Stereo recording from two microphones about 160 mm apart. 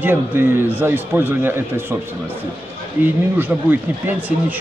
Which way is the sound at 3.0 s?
10° right (ahead or behind).